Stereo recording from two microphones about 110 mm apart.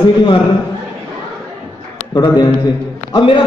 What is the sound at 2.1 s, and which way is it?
Speech, 40° left (ahead or behind).